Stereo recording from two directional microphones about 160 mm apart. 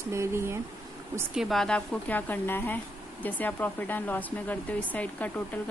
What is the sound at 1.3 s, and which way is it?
Speech, centre (ahead or behind).